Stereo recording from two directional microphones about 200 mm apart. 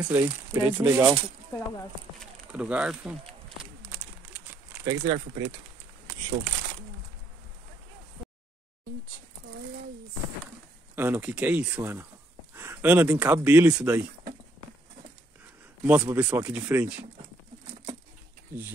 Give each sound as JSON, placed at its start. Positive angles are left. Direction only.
{"t": 0.0, "sound": "speech", "side_deg": -10}
{"t": 2.5, "sound": "speech", "side_deg": -5}
{"t": 3.8, "sound": "bird", "side_deg": -10}
{"t": 4.8, "sound": "speech", "side_deg": -20}
{"t": 11.0, "sound": "speech", "side_deg": -10}
{"t": 15.8, "sound": "speech", "side_deg": -10}